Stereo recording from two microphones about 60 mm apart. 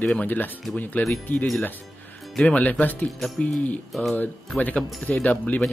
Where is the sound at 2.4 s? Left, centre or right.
Left.